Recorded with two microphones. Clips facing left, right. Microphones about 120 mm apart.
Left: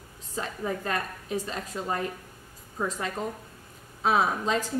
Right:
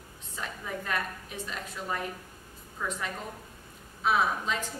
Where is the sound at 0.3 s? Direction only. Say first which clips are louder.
Left 6 dB; 35° left (ahead or behind).